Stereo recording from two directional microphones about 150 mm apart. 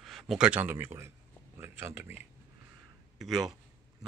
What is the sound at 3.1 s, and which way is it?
Speech, centre (ahead or behind).